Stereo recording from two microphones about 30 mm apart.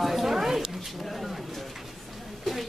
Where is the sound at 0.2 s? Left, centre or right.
Centre.